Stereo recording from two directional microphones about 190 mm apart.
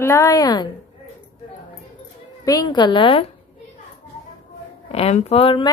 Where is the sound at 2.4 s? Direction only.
20° left (ahead or behind).